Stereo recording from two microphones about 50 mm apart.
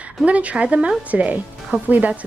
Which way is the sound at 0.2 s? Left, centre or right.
Right.